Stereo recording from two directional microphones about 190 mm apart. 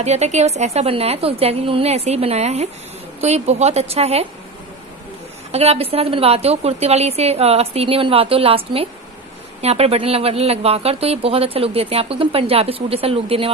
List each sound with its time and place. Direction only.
0.0 s speech: 35° right (ahead or behind)
5.5 s speech: 35° right (ahead or behind)